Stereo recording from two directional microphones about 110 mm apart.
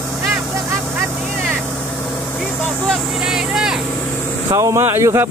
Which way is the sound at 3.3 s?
5° right (ahead or behind).